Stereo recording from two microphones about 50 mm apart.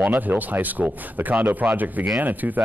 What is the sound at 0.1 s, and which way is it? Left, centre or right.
Speech, right.